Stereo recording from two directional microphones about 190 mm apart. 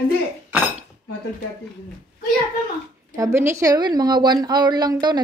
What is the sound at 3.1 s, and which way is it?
A woman's voice, 15° right (ahead or behind).